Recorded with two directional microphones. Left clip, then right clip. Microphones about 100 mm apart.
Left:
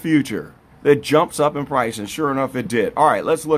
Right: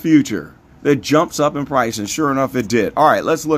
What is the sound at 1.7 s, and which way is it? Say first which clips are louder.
Speech: right 3 dB; 25° right (ahead or behind).